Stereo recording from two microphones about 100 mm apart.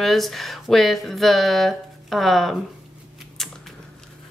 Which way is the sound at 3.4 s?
5° left (ahead or behind).